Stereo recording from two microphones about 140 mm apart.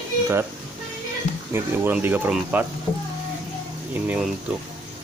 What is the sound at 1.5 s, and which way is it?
Speech, 15° right (ahead or behind).